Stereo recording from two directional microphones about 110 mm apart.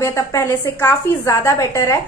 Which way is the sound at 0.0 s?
25° left (ahead or behind).